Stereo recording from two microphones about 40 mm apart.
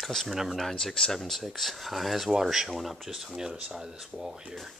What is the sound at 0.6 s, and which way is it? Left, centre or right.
Speech, centre.